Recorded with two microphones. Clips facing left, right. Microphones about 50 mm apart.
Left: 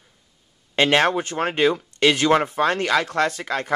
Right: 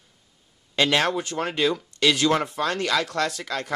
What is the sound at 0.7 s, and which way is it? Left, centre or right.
Speech, left.